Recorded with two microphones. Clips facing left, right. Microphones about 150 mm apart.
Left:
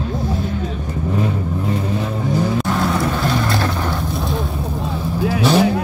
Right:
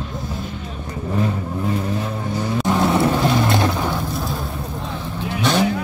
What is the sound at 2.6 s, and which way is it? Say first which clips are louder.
Vehicle: right 1 dB; 15° right (ahead or behind).